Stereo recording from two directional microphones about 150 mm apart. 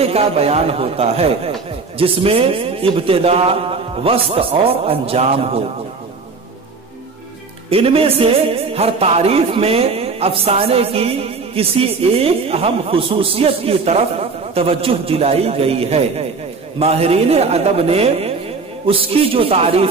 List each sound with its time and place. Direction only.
0.0 s speech: 40° right (ahead or behind)
7.7 s a man's voice: 40° right (ahead or behind)